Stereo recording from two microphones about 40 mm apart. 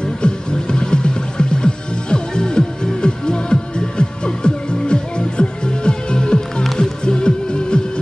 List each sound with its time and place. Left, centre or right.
0.2 s music: left